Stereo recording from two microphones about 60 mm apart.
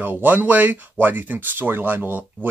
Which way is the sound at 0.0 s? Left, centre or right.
Right.